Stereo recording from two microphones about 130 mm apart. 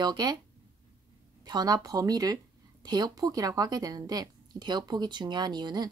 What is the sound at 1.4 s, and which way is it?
A woman's voice, 30° right (ahead or behind).